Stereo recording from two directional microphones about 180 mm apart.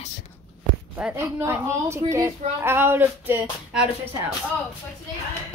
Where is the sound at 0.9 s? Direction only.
10° right (ahead or behind).